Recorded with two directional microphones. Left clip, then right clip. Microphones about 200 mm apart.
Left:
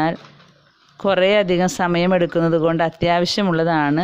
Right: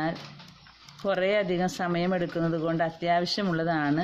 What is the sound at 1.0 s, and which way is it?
Speech, 50° left (ahead or behind).